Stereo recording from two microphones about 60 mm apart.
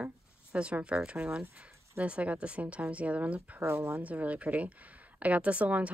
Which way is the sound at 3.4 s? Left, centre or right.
Right.